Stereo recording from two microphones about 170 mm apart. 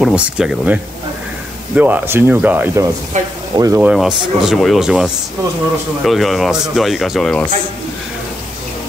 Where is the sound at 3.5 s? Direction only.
20° right (ahead or behind).